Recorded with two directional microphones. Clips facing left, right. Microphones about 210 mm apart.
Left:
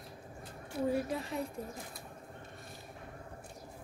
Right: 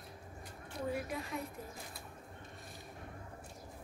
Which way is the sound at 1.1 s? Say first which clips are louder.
Left 4 dB; 30° left (ahead or behind).